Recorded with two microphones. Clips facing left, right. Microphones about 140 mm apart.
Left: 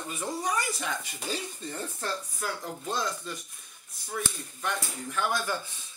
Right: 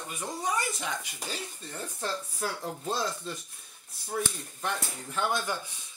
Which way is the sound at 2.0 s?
30° right (ahead or behind).